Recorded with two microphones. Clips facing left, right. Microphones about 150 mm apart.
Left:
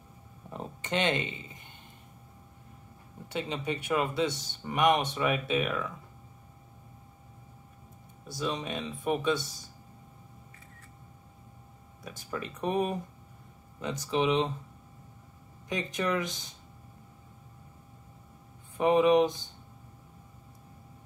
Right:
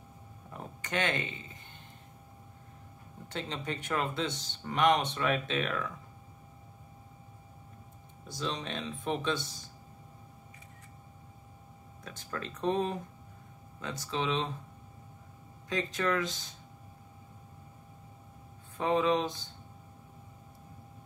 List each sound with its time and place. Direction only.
0.5 s a sound: 20° left (ahead or behind)
3.3 s speech: 10° left (ahead or behind)
8.4 s speech: 10° left (ahead or behind)
12.0 s speech: 10° left (ahead or behind)
15.7 s speech: 20° left (ahead or behind)
18.8 s speech: 15° left (ahead or behind)